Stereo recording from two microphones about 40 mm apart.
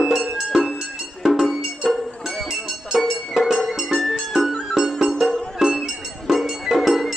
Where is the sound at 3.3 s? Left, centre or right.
Centre.